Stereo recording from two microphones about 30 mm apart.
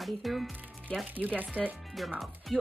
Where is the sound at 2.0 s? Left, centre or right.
Centre.